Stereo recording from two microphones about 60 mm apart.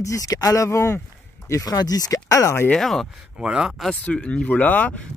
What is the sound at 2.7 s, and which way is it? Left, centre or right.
Speech, centre.